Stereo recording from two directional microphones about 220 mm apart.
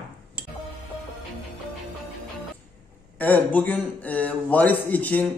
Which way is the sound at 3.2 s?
5° left (ahead or behind).